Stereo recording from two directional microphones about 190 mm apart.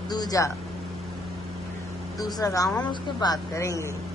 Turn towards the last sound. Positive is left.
turn(degrees=15)  # may be behind; listen again after turning